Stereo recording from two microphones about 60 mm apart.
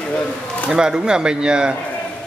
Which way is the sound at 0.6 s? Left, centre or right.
Centre.